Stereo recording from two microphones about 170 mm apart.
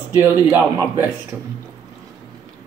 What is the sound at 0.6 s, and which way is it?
Speech, 15° right (ahead or behind).